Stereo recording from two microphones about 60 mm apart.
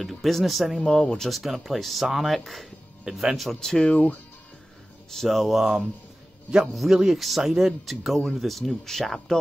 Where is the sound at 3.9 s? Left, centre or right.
Left.